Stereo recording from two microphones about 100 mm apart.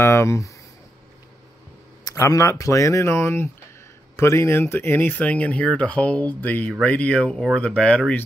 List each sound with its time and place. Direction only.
0.0 s speech: 25° left (ahead or behind)
2.0 s speech: 35° left (ahead or behind); by 8.2 s 10° left (ahead or behind)